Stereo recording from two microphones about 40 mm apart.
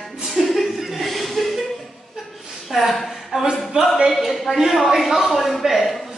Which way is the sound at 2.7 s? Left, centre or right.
Centre.